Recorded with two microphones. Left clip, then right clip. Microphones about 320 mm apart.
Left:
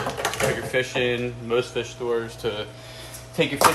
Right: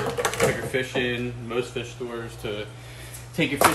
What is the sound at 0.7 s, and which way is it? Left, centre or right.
Speech, left.